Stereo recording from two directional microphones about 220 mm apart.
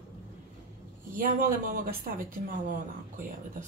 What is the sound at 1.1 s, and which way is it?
Speech, 40° right (ahead or behind).